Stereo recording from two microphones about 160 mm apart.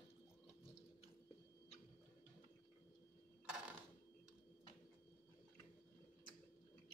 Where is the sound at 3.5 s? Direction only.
5° right (ahead or behind).